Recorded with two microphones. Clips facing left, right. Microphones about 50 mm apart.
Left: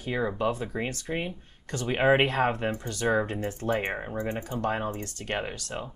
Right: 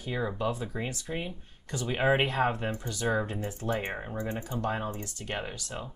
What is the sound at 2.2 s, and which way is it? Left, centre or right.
Speech, left.